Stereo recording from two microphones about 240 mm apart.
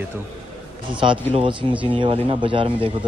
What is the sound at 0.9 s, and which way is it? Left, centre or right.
Speech, right.